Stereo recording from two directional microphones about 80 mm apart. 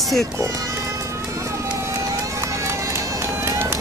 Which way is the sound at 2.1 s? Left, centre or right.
Right.